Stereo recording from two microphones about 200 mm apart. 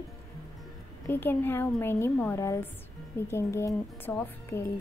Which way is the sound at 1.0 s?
10° left (ahead or behind).